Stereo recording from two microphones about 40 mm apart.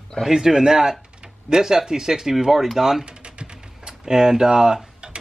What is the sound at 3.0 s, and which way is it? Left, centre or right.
Typing, right.